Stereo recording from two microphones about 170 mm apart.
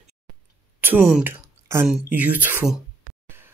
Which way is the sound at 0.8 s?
10° right (ahead or behind).